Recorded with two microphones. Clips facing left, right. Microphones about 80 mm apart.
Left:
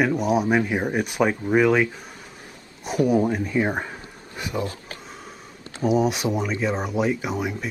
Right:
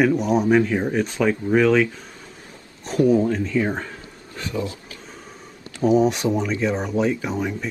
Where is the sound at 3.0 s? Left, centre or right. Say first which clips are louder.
Right 3 dB; centre.